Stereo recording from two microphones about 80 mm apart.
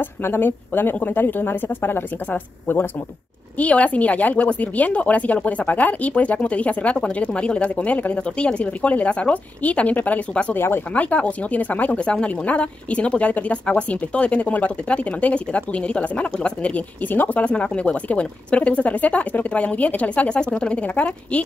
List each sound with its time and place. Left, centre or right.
0.0 s speech: left
10.5 s speech: left
11.1 s speech: centre